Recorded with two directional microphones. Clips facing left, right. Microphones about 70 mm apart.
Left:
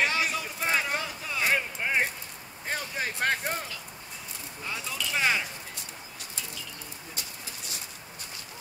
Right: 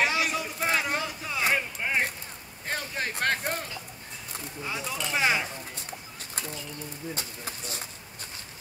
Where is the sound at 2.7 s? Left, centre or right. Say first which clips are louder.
Even; centre.